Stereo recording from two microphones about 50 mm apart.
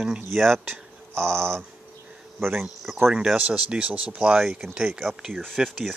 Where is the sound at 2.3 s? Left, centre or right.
Right.